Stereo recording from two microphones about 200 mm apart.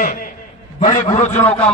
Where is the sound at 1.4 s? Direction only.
5° left (ahead or behind).